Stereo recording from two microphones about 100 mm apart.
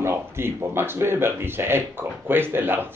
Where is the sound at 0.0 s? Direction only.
25° right (ahead or behind).